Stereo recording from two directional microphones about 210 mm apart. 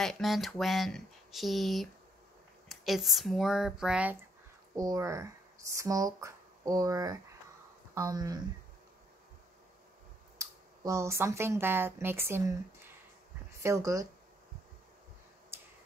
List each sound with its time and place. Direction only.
0.0 s speech: centre (ahead or behind)
4.7 s speech: 15° right (ahead or behind)
10.4 s speech: 15° right (ahead or behind)
15.5 s a sound: 10° right (ahead or behind)